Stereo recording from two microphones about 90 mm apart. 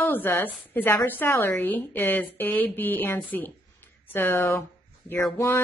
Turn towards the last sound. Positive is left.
turn(degrees=25)  # may be behind; listen again after turning